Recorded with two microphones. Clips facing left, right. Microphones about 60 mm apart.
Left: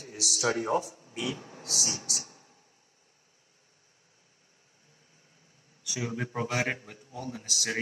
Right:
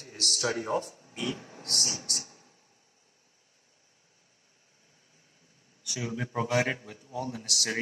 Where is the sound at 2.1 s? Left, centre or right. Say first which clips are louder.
Even; left.